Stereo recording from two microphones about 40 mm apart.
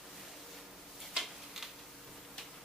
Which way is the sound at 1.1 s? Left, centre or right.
Centre.